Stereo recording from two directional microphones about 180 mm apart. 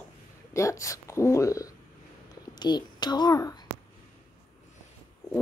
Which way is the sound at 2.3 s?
25° left (ahead or behind).